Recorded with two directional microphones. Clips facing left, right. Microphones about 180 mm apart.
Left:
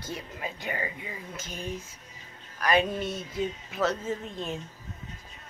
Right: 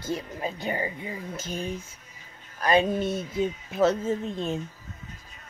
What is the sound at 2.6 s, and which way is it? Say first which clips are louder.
Speech: right 3 dB; 30° right (ahead or behind).